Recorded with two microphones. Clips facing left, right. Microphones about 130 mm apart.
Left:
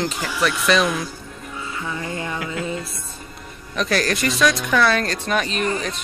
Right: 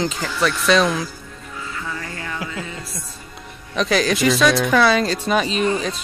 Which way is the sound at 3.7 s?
Centre (ahead or behind).